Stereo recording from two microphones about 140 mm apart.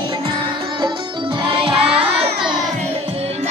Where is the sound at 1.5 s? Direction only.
40° right (ahead or behind).